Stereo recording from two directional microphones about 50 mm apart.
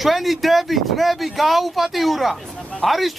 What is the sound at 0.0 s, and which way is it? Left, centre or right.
Speech, centre.